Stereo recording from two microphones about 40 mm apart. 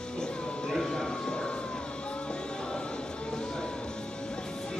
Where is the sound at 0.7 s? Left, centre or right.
Centre.